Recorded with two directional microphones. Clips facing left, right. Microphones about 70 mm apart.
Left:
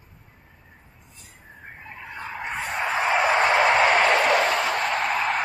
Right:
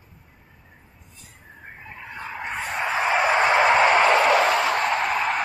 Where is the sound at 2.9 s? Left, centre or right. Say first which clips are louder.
Even; right.